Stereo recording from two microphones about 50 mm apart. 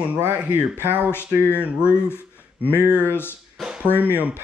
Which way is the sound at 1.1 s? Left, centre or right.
Left.